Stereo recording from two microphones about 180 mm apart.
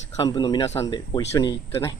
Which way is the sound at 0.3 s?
25° left (ahead or behind).